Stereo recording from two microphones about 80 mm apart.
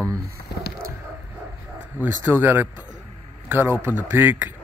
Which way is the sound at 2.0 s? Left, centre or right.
Right.